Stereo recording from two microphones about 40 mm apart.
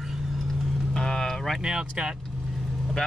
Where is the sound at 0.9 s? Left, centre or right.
Centre.